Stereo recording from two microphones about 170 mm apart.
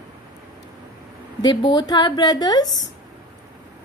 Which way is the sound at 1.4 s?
25° left (ahead or behind).